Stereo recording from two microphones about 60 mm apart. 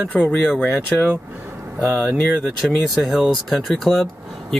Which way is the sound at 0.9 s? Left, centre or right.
Centre.